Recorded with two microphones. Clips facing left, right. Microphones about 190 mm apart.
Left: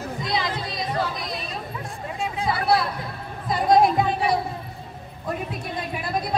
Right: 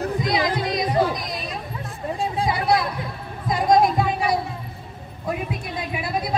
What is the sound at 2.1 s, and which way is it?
Chatter, 35° right (ahead or behind).